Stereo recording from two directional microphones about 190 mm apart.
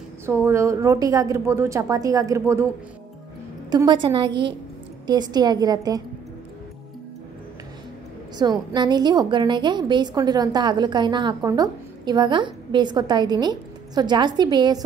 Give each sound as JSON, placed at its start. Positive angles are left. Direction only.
{"t": 0.3, "sound": "a woman's voice", "side_deg": -15}
{"t": 3.7, "sound": "a woman's voice", "side_deg": -25}
{"t": 8.4, "sound": "a woman's voice", "side_deg": -20}